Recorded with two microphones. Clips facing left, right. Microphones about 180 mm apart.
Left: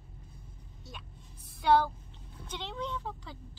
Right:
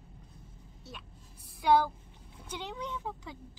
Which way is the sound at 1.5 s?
10° right (ahead or behind).